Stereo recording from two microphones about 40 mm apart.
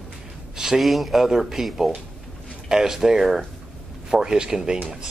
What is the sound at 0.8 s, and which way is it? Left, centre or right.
Speech, centre.